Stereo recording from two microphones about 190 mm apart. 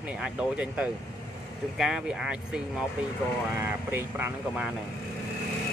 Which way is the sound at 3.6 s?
10° right (ahead or behind).